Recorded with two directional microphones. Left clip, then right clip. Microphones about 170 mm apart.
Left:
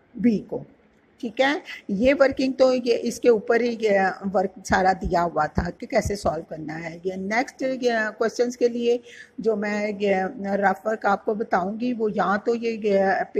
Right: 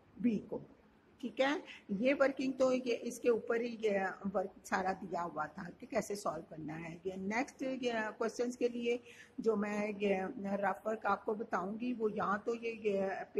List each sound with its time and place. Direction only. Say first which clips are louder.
0.5 s a woman's voice: left 12 dB; 10° left (ahead or behind)